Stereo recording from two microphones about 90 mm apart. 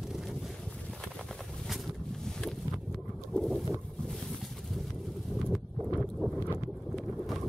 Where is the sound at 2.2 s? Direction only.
5° left (ahead or behind).